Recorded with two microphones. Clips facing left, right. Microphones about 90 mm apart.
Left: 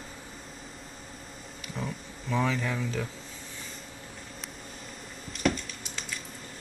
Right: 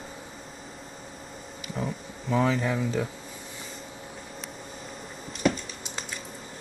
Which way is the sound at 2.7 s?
10° right (ahead or behind).